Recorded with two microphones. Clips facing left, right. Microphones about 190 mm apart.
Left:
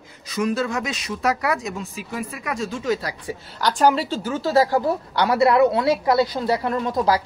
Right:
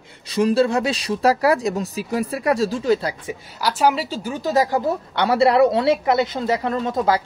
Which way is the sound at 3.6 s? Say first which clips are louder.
Left 1 dB; 5° right (ahead or behind).